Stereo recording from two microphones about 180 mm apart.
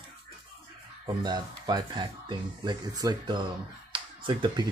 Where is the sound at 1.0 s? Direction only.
25° right (ahead or behind).